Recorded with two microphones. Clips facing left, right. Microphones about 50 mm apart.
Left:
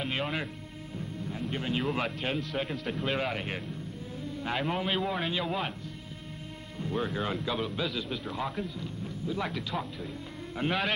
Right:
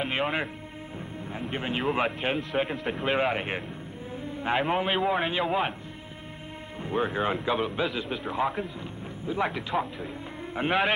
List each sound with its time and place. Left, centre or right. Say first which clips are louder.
0.0 s speech: right 4 dB; right
1.5 s a man's voice: right 3 dB; right
6.8 s a man's voice: right 4 dB; right